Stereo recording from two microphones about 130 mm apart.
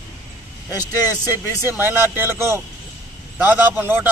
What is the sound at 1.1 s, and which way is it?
A man's voice, 15° right (ahead or behind).